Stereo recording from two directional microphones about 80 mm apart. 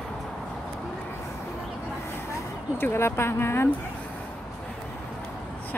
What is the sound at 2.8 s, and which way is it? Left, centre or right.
Speech, left.